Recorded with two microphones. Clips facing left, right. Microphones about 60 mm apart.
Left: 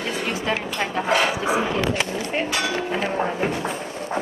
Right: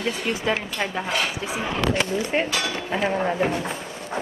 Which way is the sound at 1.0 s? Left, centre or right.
Left.